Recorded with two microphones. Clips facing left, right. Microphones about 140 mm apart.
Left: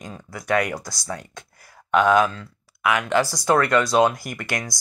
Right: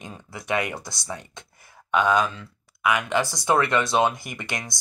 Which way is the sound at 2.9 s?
20° right (ahead or behind).